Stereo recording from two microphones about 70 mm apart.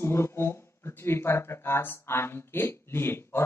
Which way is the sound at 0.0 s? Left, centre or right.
Left.